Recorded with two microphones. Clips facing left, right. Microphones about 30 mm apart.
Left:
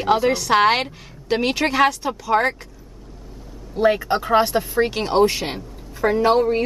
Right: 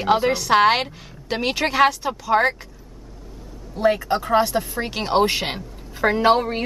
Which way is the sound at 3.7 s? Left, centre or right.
Centre.